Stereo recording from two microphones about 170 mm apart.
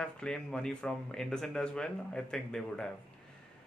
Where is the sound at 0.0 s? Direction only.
5° left (ahead or behind).